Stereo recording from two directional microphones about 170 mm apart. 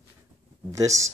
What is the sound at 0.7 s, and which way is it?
Speech, 20° right (ahead or behind).